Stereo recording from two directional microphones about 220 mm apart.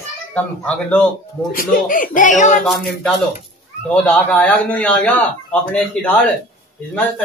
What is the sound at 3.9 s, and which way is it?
A man's voice, 5° left (ahead or behind).